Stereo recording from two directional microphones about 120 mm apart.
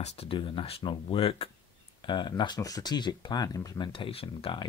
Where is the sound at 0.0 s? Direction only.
50° left (ahead or behind).